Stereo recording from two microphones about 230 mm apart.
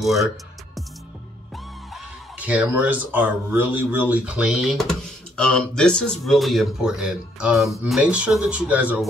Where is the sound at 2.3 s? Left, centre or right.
Centre.